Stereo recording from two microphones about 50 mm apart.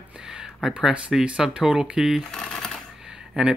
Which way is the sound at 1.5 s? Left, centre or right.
Right.